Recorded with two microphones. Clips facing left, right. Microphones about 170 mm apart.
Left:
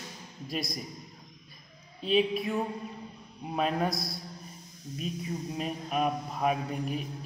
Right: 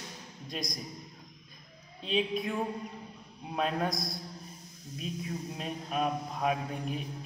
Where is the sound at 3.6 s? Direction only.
5° left (ahead or behind).